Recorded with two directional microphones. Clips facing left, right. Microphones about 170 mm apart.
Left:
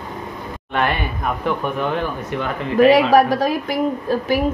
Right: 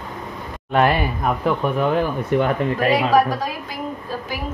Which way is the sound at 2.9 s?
75° left (ahead or behind).